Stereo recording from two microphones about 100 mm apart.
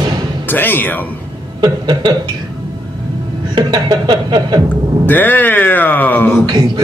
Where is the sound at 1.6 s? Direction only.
45° right (ahead or behind).